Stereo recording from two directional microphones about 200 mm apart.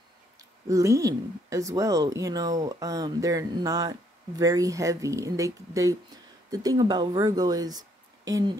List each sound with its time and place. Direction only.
0.7 s speech: 15° right (ahead or behind)